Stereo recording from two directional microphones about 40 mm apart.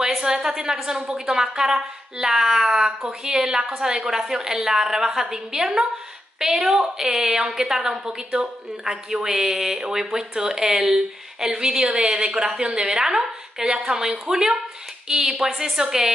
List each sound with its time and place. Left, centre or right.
0.0 s a woman's voice: centre